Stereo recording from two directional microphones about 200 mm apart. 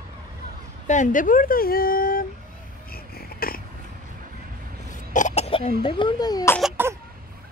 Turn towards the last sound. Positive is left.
turn(degrees=-10)  # may be behind; listen again after turning